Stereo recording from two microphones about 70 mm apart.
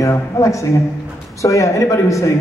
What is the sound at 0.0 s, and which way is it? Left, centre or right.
A man's voice, left.